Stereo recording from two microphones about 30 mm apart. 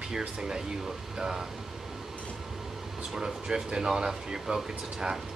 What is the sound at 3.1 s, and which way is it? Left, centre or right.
Speech, centre.